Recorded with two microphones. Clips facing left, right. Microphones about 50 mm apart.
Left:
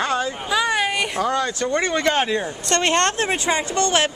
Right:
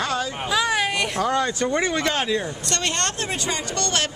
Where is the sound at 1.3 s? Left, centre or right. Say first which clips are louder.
Even; centre.